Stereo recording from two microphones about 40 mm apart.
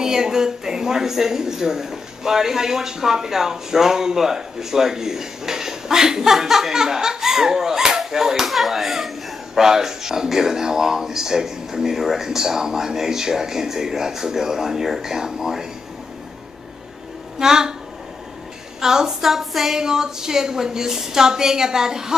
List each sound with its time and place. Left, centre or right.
0.0 s a woman's voice: centre
17.4 s a woman's voice: centre
18.8 s a woman's voice: centre
19.3 s a sound: centre
19.8 s a woman's voice: centre